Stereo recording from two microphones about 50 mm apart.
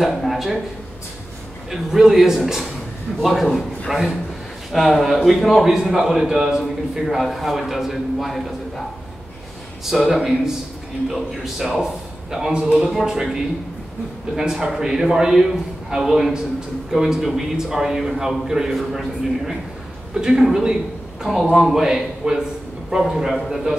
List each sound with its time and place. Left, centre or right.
0.0 s a man's voice: centre
1.7 s a man's voice: centre
3.9 s a man's voice: centre
4.7 s a man's voice: centre
9.8 s a man's voice: centre